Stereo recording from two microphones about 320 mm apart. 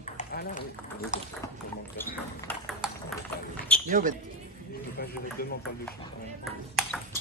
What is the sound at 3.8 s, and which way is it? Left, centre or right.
Speech, right.